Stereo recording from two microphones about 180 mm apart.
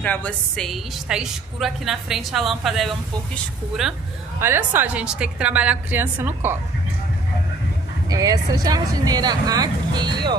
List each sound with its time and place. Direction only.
0.0 s a woman's voice: 10° left (ahead or behind); by 6.6 s 10° right (ahead or behind)
8.1 s speech: 20° right (ahead or behind)